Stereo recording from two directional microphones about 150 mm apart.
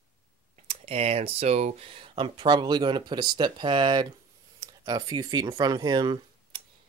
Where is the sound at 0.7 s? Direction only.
45° right (ahead or behind).